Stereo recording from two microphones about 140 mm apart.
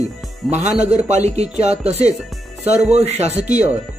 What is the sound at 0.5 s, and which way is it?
Speech, 55° right (ahead or behind).